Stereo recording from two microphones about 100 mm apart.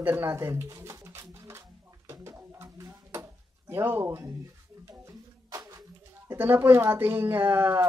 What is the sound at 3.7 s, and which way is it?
Speech, 20° right (ahead or behind).